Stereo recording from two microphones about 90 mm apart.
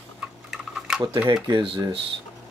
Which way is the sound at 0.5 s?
5° right (ahead or behind).